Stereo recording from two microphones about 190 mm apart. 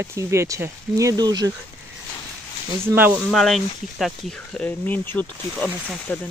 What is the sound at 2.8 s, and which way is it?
Speech, 10° right (ahead or behind).